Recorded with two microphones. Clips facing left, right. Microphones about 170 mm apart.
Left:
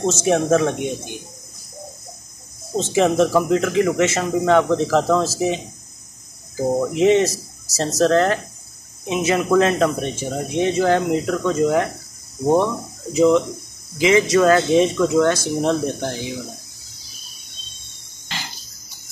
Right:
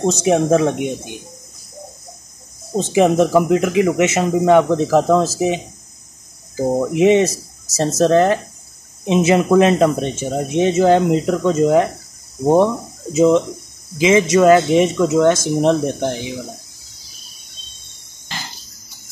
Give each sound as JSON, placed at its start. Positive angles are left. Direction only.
{"t": 0.0, "sound": "speech", "side_deg": -15}
{"t": 2.7, "sound": "speech", "side_deg": -15}
{"t": 6.9, "sound": "speech", "side_deg": -15}
{"t": 13.1, "sound": "speech", "side_deg": -20}